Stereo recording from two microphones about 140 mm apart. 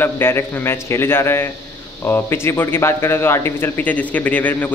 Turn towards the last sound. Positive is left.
turn(degrees=10)  # may be behind; listen again after turning